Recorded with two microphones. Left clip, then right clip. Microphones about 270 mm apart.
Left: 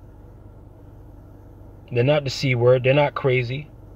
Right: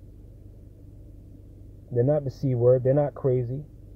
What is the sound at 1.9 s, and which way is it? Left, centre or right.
Speech, left.